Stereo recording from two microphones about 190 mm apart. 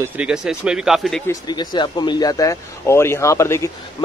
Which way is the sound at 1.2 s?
20° left (ahead or behind).